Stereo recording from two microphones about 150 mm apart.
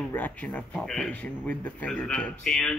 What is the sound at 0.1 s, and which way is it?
Speech, 10° left (ahead or behind).